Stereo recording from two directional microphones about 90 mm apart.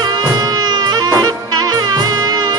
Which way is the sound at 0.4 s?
45° right (ahead or behind).